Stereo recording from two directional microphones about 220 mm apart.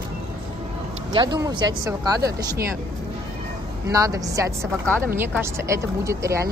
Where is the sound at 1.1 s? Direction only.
20° right (ahead or behind).